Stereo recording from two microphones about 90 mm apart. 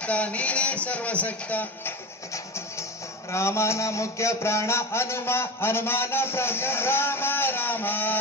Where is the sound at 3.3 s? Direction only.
30° left (ahead or behind).